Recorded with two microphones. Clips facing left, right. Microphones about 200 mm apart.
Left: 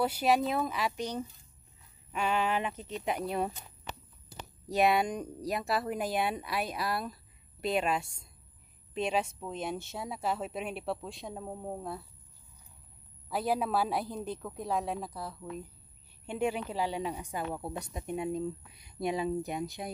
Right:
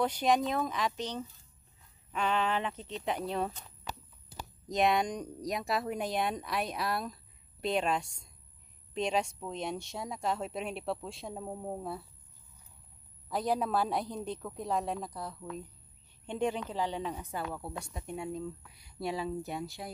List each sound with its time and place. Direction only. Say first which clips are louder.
0.0 s speech: left 1 dB; 10° left (ahead or behind)
13.3 s speech: even; 5° left (ahead or behind)